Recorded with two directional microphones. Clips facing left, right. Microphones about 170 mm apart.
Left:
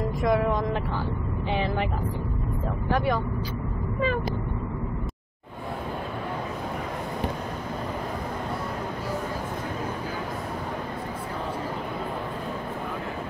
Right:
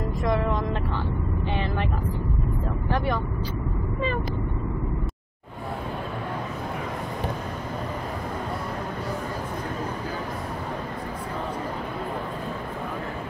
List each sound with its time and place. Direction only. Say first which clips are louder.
0.2 s vehicle: left 2 dB; 10° left (ahead or behind)